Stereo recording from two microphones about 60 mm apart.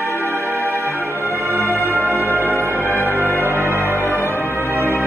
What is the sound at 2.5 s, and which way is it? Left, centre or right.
Music, right.